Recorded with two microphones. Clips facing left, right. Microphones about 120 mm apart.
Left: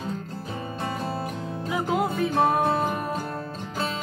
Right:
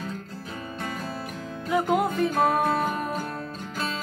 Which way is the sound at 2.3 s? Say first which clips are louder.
Left 3 dB; 25° left (ahead or behind).